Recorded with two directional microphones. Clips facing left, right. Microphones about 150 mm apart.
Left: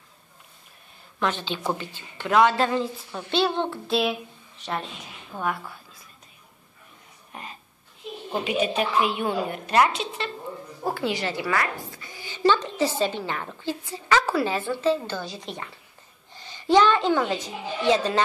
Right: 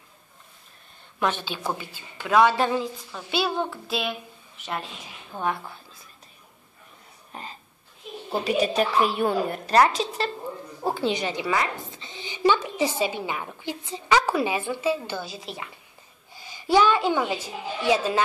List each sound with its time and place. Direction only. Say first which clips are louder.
1.2 s a woman's voice: even; 10° right (ahead or behind)
2.8 s speech: left 2 dB; centre (ahead or behind)
5.4 s a woman's voice: right 1 dB; 25° right (ahead or behind)
7.3 s burping: right 1 dB; 30° right (ahead or behind)
8.3 s a woman's voice: right 1 dB; 35° right (ahead or behind)
10.8 s a woman's voice: right 2 dB; 20° right (ahead or behind)
11.9 s a sound: right 2 dB; 20° right (ahead or behind)
12.5 s a woman's voice: left 1 dB; 10° right (ahead or behind)